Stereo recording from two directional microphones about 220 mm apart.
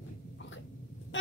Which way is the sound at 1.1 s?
55° left (ahead or behind).